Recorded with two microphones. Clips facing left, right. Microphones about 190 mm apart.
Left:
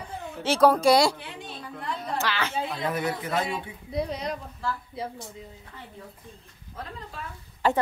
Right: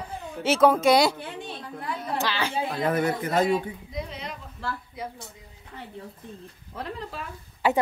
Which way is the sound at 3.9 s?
35° left (ahead or behind).